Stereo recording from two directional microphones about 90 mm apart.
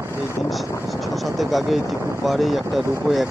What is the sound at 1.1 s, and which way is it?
Speech, centre (ahead or behind).